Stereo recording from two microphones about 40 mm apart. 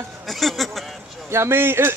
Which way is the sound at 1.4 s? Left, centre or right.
Right.